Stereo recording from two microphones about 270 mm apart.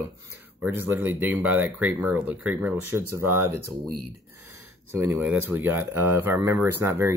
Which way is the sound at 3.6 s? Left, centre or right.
Right.